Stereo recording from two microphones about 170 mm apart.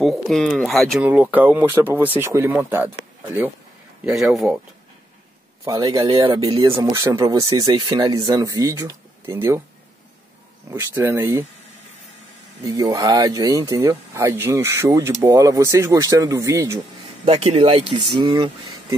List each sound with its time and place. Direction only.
0.0 s speech: centre (ahead or behind)
1.0 s speech: 10° right (ahead or behind)
4.0 s speech: centre (ahead or behind)
5.7 s speech: 20° right (ahead or behind)
10.8 s speech: 15° right (ahead or behind)
12.6 s speech: 20° right (ahead or behind)
17.2 s speech: 35° right (ahead or behind)